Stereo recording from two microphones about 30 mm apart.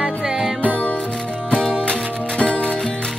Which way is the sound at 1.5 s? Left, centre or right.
Left.